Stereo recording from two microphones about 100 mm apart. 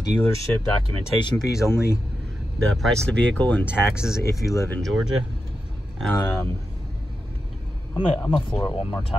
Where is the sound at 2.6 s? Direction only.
5° left (ahead or behind).